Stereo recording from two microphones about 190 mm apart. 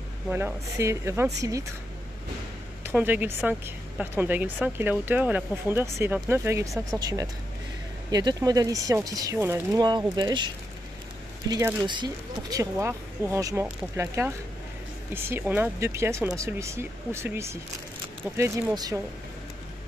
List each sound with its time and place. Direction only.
0.3 s a woman's voice: 10° right (ahead or behind)
2.8 s a woman's voice: 10° right (ahead or behind)